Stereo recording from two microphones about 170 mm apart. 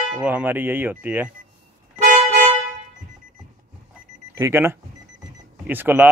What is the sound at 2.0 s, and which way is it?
Music, 45° right (ahead or behind).